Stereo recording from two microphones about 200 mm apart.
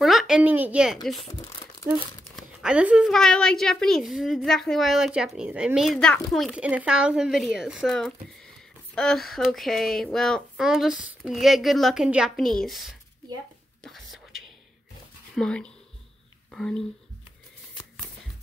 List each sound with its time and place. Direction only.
0.0 s a woman's voice: centre (ahead or behind)
1.2 s crumpling: 20° left (ahead or behind)
2.3 s a woman's voice: 5° right (ahead or behind)
13.8 s whispering: centre (ahead or behind)
15.3 s a woman's voice: 5° left (ahead or behind)